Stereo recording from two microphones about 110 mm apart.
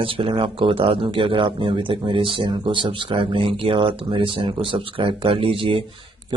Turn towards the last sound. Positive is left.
turn(degrees=-55)  # may be behind; listen again after turning